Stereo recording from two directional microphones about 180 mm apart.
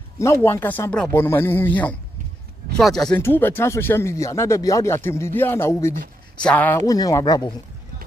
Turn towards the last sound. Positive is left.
turn(degrees=20)  # may be behind; listen again after turning